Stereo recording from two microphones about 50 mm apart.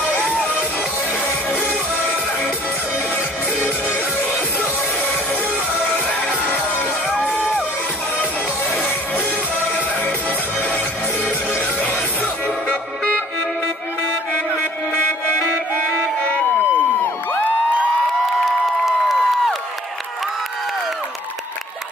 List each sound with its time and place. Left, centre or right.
0.0 s music: left
6.0 s music: left
9.1 s music: left
12.6 s music: left
16.2 s a sound: left
18.9 s crowd: centre